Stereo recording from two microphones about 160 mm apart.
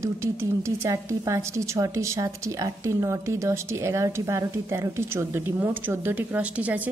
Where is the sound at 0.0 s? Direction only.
15° right (ahead or behind).